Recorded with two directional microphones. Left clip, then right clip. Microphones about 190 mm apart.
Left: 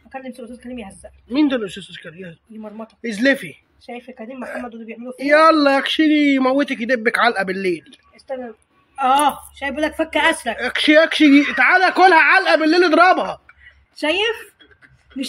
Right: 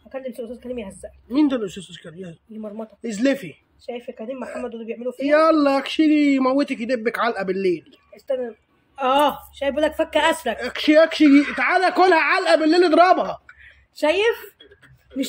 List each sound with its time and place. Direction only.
0.6 s a woman's voice: 50° right (ahead or behind)
1.3 s speech: 5° right (ahead or behind)
4.1 s a woman's voice: 50° right (ahead or behind)
4.4 s speech: centre (ahead or behind)
4.6 s a woman's voice: 55° right (ahead or behind)
5.1 s speech: 5° left (ahead or behind)
8.9 s a woman's voice: 50° right (ahead or behind)
10.6 s speech: centre (ahead or behind)
14.0 s a woman's voice: 45° right (ahead or behind)